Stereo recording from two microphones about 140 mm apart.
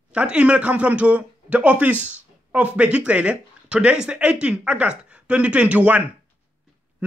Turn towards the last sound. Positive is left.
turn(degrees=-10)  # may be behind; listen again after turning